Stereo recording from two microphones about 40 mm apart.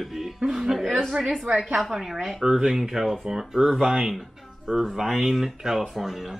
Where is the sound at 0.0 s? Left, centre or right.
Centre.